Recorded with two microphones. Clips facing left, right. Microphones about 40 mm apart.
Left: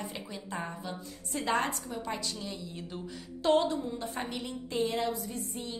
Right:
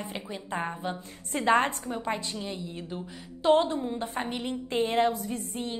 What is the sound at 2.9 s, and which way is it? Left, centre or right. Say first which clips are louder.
A woman's voice: right 2 dB; centre.